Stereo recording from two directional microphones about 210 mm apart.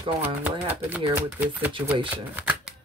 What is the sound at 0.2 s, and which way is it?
Speech, 10° right (ahead or behind).